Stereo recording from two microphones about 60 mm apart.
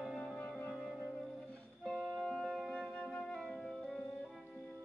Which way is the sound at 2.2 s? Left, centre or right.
Centre.